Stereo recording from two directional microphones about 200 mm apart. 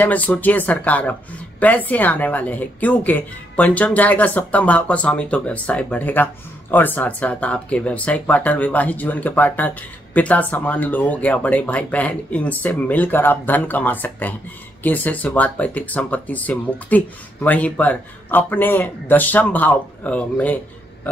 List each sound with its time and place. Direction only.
0.0 s speech: 10° left (ahead or behind)